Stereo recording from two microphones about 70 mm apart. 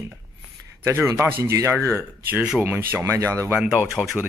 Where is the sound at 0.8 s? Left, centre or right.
Right.